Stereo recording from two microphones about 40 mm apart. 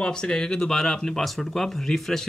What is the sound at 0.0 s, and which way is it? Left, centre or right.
Speech, left.